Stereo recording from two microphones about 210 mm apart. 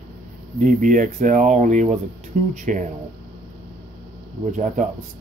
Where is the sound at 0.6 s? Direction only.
40° right (ahead or behind).